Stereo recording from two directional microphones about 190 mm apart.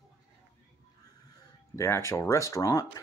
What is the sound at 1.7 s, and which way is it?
Speech, 15° left (ahead or behind).